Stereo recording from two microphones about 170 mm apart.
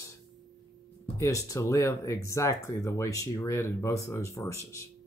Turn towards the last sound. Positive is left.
turn(degrees=15)  # may be behind; listen again after turning